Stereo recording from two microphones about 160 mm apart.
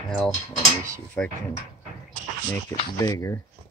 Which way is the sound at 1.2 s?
10° left (ahead or behind).